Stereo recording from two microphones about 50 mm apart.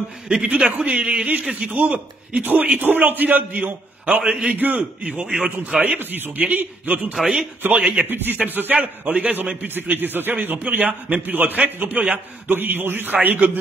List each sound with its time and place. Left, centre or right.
0.3 s a man's voice: centre
4.2 s a man's voice: centre
4.6 s a man's voice: right
5.9 s speech: right
6.3 s a man's voice: right
7.7 s a man's voice: right
8.0 s a man's voice: right
12.4 s a man's voice: right